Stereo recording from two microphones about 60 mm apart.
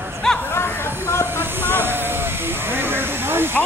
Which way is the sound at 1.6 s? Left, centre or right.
Right.